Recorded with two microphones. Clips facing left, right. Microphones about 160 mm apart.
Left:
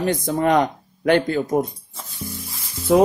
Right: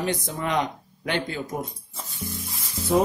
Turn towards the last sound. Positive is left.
turn(degrees=90)